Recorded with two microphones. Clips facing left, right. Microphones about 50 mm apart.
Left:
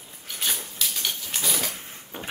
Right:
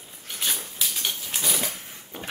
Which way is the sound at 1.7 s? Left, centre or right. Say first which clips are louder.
Left 1 dB; left.